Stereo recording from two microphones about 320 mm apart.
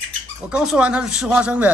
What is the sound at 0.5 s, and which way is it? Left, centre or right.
Speech, centre.